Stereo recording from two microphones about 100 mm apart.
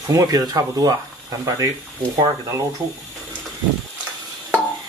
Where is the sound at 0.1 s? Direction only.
35° right (ahead or behind).